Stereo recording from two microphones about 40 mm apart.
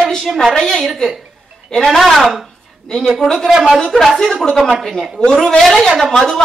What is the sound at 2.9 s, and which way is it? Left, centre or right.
Speech, left.